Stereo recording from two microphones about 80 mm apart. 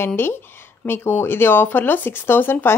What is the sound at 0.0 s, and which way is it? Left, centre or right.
Speech, left.